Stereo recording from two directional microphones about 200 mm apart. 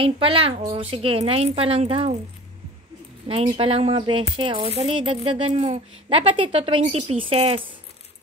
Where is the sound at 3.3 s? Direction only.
30° right (ahead or behind).